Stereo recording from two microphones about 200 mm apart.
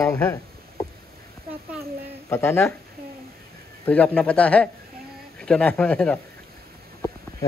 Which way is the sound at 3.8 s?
5° left (ahead or behind).